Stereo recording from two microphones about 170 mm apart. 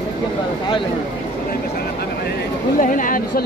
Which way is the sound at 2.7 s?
50° left (ahead or behind).